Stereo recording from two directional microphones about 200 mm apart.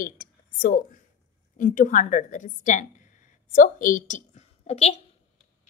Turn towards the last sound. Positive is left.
turn(degrees=30)  # may be behind; listen again after turning